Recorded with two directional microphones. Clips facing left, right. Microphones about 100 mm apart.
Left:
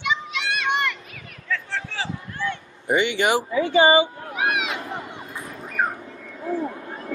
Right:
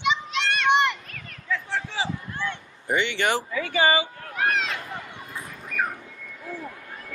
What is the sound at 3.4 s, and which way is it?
Speech, 25° left (ahead or behind).